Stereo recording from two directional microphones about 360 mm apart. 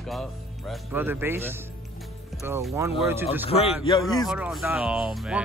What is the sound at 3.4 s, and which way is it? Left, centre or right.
Speech, centre.